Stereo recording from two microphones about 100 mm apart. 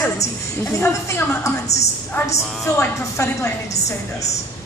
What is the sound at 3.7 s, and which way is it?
Speech, 90° left.